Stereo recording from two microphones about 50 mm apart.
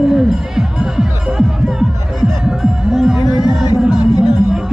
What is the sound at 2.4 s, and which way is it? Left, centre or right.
Music, centre.